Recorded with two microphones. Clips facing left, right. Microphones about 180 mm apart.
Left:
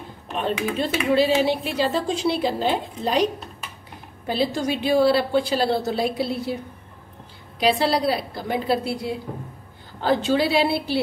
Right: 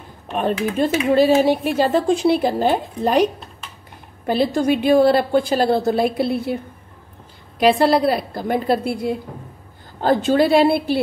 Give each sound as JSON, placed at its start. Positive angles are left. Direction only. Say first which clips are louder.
{"t": 0.4, "sound": "speech", "louder": "right 5 dB", "side_deg": -50}
{"t": 4.3, "sound": "speech", "louder": "right 6 dB", "side_deg": -55}